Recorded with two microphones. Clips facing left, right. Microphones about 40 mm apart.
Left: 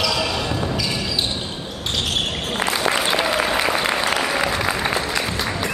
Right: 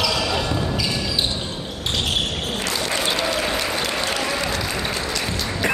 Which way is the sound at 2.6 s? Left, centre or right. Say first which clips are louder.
Left 5 dB; left.